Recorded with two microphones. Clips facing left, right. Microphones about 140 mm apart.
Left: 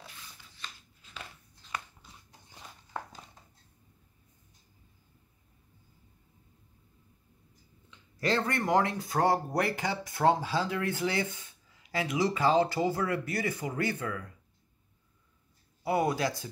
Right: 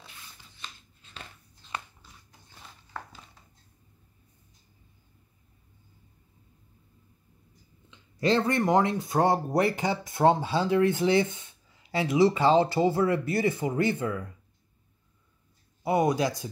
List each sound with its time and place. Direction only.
2.9 s a sound: 15° left (ahead or behind)
7.9 s speech: 20° right (ahead or behind)
15.8 s speech: 20° right (ahead or behind)